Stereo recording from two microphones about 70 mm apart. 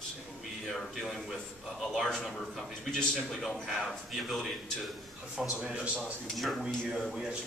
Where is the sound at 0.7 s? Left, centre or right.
Centre.